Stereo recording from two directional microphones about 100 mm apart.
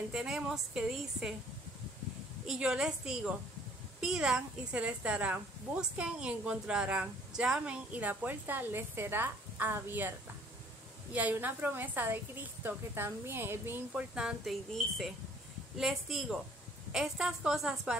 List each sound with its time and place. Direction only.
0.1 s speech: 5° right (ahead or behind)
2.4 s speech: 5° right (ahead or behind)
11.1 s speech: 15° right (ahead or behind)
14.1 s speech: 5° right (ahead or behind)
15.8 s a woman's voice: 5° right (ahead or behind)